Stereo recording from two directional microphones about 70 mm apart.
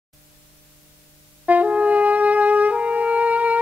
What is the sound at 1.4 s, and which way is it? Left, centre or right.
Brass instrument, right.